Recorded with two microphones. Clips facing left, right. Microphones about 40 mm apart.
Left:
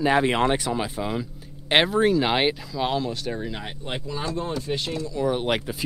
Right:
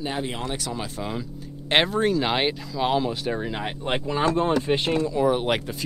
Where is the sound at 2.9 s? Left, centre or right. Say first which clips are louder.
Right 3 dB; centre.